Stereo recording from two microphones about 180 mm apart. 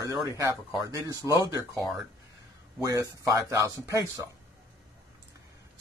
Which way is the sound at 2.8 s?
20° right (ahead or behind).